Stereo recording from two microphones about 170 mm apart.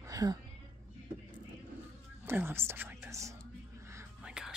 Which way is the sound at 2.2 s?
15° right (ahead or behind).